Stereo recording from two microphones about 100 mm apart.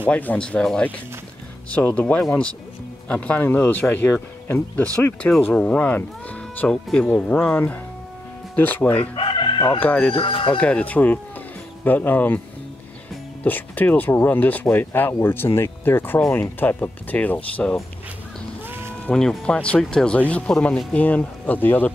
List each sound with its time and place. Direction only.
0.1 s speech: 15° left (ahead or behind)
5.2 s speech: 10° left (ahead or behind)
8.9 s chicken: 65° left (ahead or behind)
9.8 s speech: 15° left (ahead or behind)
10.1 s speech: 60° left (ahead or behind)
10.6 s speech: 15° left (ahead or behind)
13.4 s speech: 20° left (ahead or behind)
18.7 s livestock: 25° right (ahead or behind)
19.0 s speech: 10° left (ahead or behind)